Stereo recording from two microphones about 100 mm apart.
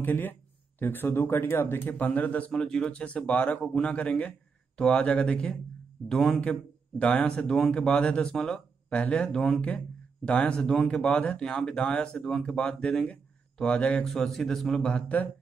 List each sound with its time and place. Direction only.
0.0 s speech: 20° left (ahead or behind)